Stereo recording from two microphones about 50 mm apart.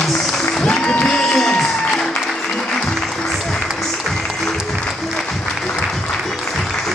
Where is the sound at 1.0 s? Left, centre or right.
Centre.